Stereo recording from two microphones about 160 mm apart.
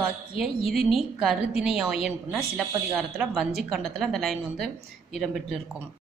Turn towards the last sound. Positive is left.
turn(degrees=0)  # may be behind; listen again after turning